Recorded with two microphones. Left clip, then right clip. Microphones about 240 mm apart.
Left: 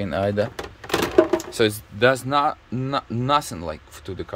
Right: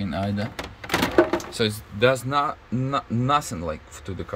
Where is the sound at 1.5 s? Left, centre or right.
Centre.